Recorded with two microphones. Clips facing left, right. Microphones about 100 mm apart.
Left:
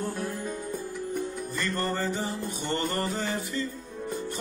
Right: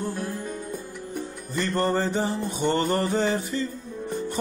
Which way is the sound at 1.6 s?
30° right (ahead or behind).